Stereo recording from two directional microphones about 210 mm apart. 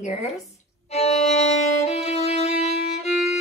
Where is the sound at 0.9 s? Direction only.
30° left (ahead or behind).